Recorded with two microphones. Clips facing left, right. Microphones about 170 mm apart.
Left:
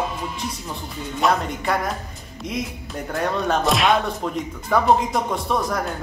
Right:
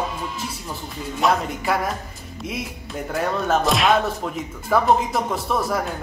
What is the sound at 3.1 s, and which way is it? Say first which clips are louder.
Speech: right 1 dB; centre (ahead or behind).